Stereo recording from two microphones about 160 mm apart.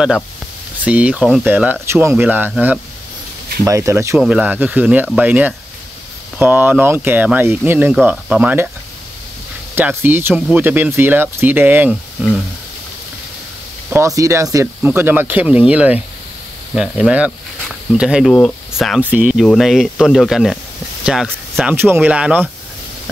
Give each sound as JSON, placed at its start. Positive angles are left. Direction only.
{"t": 0.8, "sound": "speech", "side_deg": -10}
{"t": 4.2, "sound": "speech", "side_deg": -5}
{"t": 9.8, "sound": "speech", "side_deg": -15}
{"t": 11.9, "sound": "speech", "side_deg": 0}
{"t": 13.8, "sound": "speech", "side_deg": -15}
{"t": 18.9, "sound": "speech", "side_deg": -10}